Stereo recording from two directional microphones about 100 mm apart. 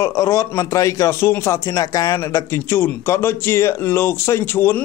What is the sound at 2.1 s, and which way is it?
A man's voice, 25° left (ahead or behind).